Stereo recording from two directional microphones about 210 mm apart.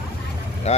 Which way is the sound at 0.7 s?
30° left (ahead or behind).